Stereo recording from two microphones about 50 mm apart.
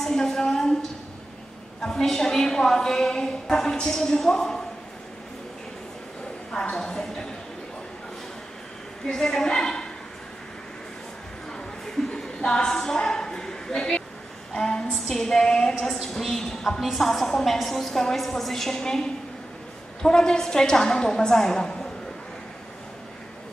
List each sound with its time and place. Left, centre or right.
0.0 s a sound: centre
1.8 s a woman's voice: centre
6.7 s a woman's voice: centre
9.1 s a woman's voice: centre
12.2 s a sound: centre
14.5 s a woman's voice: centre
14.9 s a woman's voice: centre